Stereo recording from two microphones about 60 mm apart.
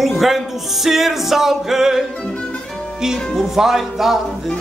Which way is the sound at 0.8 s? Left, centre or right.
Centre.